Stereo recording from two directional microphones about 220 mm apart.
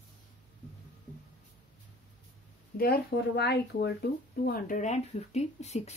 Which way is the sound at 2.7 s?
40° left (ahead or behind).